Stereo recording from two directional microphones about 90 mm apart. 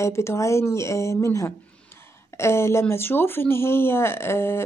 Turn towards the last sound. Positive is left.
turn(degrees=30)  # may be behind; listen again after turning